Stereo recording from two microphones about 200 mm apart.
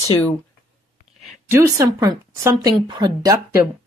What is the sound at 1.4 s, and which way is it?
Speech, 10° right (ahead or behind).